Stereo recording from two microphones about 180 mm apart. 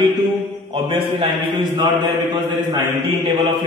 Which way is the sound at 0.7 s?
30° right (ahead or behind).